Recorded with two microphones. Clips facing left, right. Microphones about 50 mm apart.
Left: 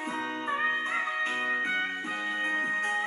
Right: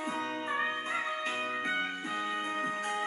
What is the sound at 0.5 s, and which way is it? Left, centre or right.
Music, left.